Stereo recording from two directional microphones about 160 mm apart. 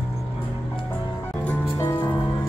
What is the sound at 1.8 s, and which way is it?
Music, 15° left (ahead or behind).